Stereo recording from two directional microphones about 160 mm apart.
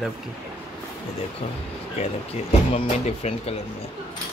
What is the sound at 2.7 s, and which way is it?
Speech, 40° left (ahead or behind).